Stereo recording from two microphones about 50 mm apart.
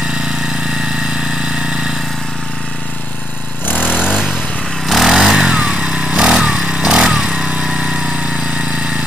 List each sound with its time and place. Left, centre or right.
1.1 s vehicle: centre
3.6 s lawn mower: left
3.9 s vehicle: centre
4.8 s motorcycle: centre; by 8.9 s right